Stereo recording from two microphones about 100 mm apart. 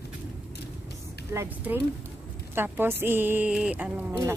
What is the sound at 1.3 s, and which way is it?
A woman's voice, 20° right (ahead or behind).